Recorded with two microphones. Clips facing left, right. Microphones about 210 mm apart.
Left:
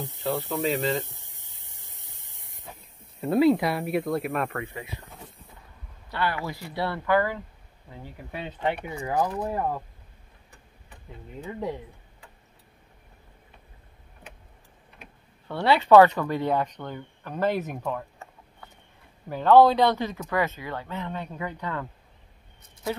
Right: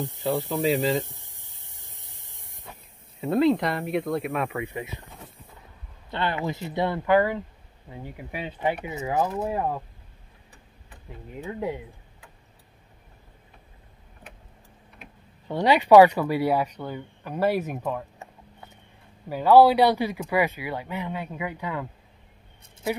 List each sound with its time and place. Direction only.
0.5 s speech: 5° right (ahead or behind)
3.2 s speech: 5° left (ahead or behind)
4.6 s speech: 15° right (ahead or behind)
6.0 s speech: 20° right (ahead or behind)
11.4 s speech: 5° right (ahead or behind)
15.4 s speech: 15° right (ahead or behind)
19.2 s speech: 10° right (ahead or behind)